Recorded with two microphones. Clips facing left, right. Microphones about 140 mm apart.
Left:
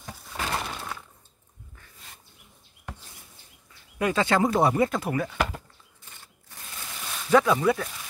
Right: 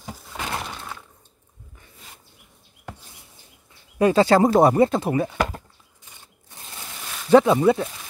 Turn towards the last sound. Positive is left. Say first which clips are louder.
# right 6 dB
turn(degrees=-25)  # may be behind; listen again after turning